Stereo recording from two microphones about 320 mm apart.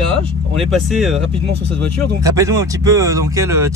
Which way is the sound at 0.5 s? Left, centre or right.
Centre.